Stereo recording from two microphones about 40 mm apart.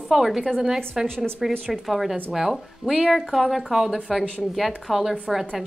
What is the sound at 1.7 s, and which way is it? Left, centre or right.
Speech, centre.